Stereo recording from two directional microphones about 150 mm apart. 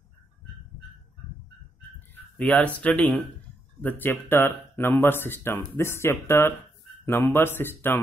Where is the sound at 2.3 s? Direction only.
10° left (ahead or behind).